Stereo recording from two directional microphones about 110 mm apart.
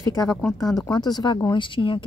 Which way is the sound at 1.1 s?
40° left (ahead or behind).